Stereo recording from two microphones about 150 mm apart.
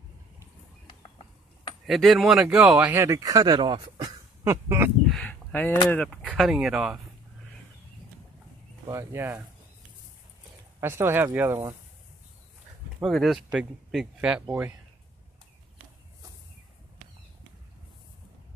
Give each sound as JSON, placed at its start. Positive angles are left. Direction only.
{"t": 0.8, "sound": "a sound", "side_deg": 30}
{"t": 1.9, "sound": "speech", "side_deg": 0}
{"t": 4.5, "sound": "speech", "side_deg": -15}
{"t": 5.0, "sound": "a sound", "side_deg": 5}
{"t": 6.3, "sound": "speech", "side_deg": -5}
{"t": 8.8, "sound": "speech", "side_deg": -15}
{"t": 10.8, "sound": "speech", "side_deg": -15}
{"t": 13.0, "sound": "speech", "side_deg": 0}